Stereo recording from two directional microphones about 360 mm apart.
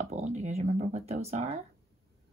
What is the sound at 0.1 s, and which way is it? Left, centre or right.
Speech, centre.